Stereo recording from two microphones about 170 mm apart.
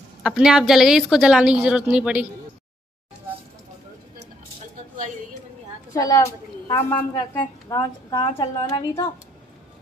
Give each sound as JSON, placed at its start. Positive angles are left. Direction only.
{"t": 0.2, "sound": "a woman's voice", "side_deg": -5}
{"t": 5.9, "sound": "a woman's voice", "side_deg": 20}